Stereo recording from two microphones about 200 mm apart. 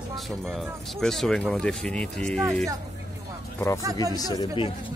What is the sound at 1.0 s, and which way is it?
Speech, centre (ahead or behind).